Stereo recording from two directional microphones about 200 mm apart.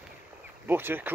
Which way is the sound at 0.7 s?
10° right (ahead or behind).